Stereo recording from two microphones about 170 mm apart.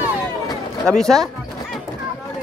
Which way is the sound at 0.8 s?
5° left (ahead or behind).